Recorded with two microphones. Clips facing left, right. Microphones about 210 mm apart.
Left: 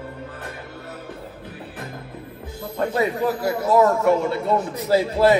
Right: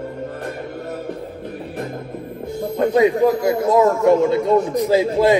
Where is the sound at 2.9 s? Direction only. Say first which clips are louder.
Right 8 dB; 20° right (ahead or behind).